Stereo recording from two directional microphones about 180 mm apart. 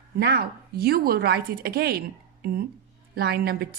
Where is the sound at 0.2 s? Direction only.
60° right (ahead or behind).